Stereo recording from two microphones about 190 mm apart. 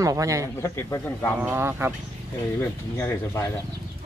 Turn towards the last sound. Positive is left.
turn(degrees=10)  # may be behind; listen again after turning